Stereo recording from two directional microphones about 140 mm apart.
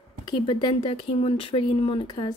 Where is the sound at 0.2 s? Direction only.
35° left (ahead or behind).